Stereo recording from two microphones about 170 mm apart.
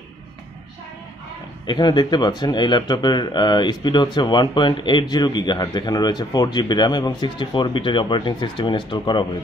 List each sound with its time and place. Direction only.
1.7 s speech: 25° left (ahead or behind)